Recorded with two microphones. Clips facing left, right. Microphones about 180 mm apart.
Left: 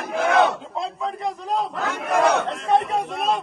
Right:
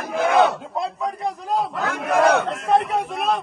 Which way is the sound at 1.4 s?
Centre (ahead or behind).